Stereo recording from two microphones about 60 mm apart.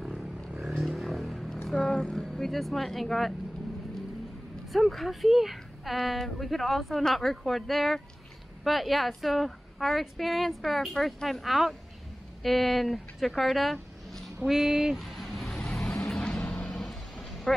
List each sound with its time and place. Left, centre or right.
0.2 s vehicle: right
0.7 s a sound: centre
1.7 s speech: centre
4.7 s a woman's voice: centre
14.5 s speech: centre
15.0 s music: centre
15.7 s vehicle: centre